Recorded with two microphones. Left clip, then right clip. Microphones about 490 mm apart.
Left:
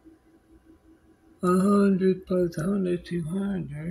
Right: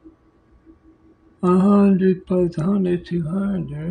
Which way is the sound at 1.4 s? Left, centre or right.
Left.